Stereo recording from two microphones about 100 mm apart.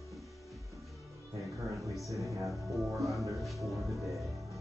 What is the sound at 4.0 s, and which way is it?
Music, centre (ahead or behind).